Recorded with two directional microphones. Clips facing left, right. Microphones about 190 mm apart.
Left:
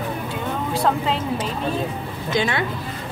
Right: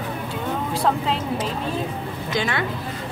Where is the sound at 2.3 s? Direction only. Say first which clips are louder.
Left 3 dB; 25° left (ahead or behind).